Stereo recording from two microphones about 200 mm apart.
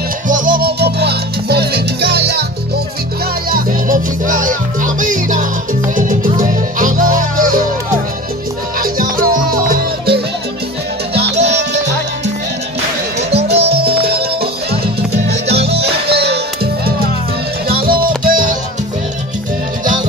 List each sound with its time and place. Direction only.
0.3 s music: 45° right (ahead or behind)
3.4 s music: 45° right (ahead or behind)
8.7 s music: 45° right (ahead or behind)
11.4 s music: 60° right (ahead or behind)
13.6 s music: 55° right (ahead or behind)
17.6 s music: 45° right (ahead or behind)